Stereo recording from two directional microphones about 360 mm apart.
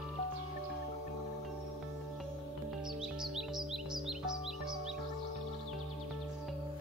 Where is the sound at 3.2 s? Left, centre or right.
Centre.